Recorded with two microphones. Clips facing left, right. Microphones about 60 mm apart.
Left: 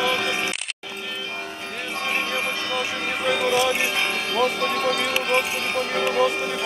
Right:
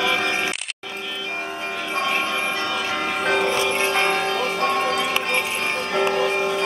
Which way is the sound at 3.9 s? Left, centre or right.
Right.